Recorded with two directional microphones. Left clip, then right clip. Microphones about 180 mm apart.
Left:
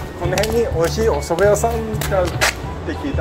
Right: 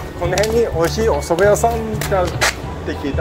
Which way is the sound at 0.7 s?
20° right (ahead or behind).